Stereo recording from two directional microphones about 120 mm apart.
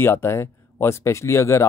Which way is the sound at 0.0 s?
20° left (ahead or behind).